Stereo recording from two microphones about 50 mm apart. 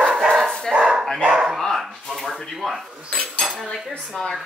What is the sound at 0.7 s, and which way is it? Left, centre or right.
Bow-wow, centre.